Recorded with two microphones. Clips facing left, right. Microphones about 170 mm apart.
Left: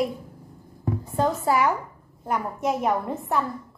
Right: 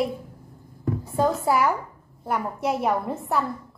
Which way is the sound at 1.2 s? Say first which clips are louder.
Right 1 dB; 5° right (ahead or behind).